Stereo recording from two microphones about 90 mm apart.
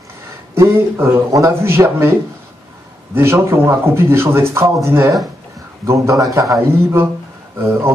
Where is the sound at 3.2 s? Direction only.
30° right (ahead or behind).